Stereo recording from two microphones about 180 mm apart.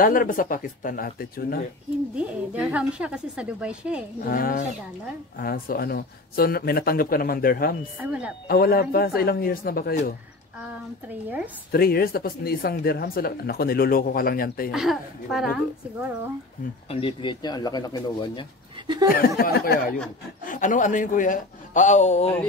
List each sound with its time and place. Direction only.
0.0 s a man's voice: 50° left (ahead or behind)
2.1 s a woman's voice: 5° right (ahead or behind)
4.2 s a man's voice: 55° left (ahead or behind)
8.0 s a woman's voice: 5° right (ahead or behind)
8.5 s speech: 55° left (ahead or behind)
11.1 s a woman's voice: 10° right (ahead or behind)
11.7 s speech: 55° left (ahead or behind)
14.7 s a woman's voice: centre (ahead or behind)
16.9 s speech: 30° left (ahead or behind)
19.0 s a man's voice: 55° left (ahead or behind); by 22.3 s 40° left (ahead or behind)